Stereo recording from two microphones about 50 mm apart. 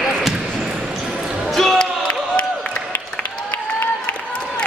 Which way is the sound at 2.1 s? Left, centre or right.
Left.